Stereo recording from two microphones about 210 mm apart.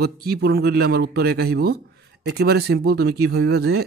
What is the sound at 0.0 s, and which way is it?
Speech, 50° right (ahead or behind).